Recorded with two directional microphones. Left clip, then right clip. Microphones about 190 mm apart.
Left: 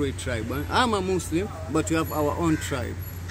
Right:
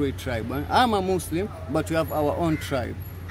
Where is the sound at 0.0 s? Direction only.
65° right (ahead or behind).